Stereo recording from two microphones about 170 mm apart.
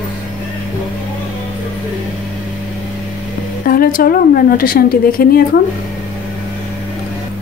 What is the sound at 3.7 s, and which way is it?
Speech, 55° left (ahead or behind).